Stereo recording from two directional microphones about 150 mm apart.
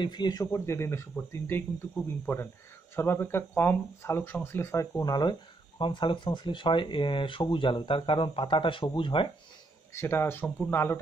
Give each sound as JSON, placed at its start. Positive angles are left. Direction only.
{"t": 0.0, "sound": "speech", "side_deg": 30}
{"t": 9.9, "sound": "speech", "side_deg": 15}